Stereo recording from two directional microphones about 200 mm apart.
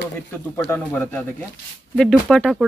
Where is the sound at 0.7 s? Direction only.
10° left (ahead or behind).